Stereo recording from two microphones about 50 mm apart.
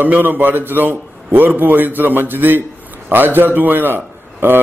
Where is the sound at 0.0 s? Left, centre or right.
Right.